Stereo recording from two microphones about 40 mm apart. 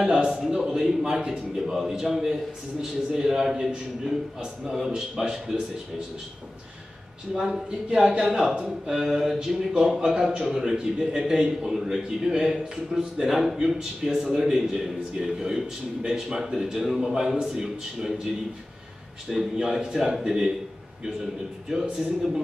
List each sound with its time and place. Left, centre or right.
0.0 s a man's voice: centre
7.3 s a man's voice: centre
19.3 s a man's voice: centre